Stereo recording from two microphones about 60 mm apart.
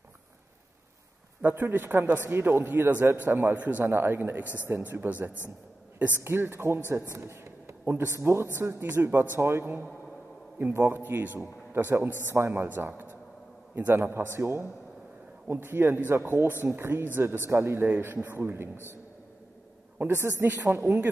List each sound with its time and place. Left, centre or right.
1.4 s a man's voice: right
12.6 s a man's voice: right
20.0 s a man's voice: right
20.8 s speech: right